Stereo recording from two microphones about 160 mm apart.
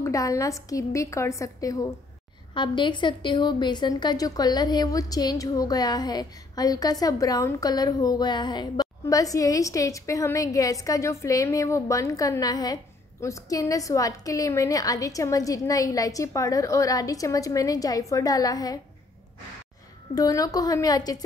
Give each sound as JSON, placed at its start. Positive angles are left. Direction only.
{"t": 0.0, "sound": "a woman's voice", "side_deg": 20}
{"t": 20.2, "sound": "a woman's voice", "side_deg": 25}